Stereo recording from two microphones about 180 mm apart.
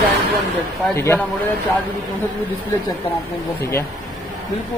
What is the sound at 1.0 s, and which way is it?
Speech, 15° left (ahead or behind).